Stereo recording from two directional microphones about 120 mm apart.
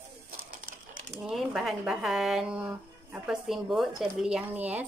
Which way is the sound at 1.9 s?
5° right (ahead or behind).